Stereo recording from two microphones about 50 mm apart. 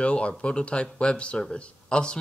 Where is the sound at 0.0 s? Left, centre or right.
Left.